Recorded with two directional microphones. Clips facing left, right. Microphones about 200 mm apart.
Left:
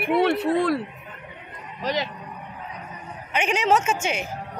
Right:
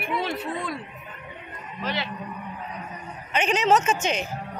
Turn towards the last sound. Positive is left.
turn(degrees=10)  # may be behind; listen again after turning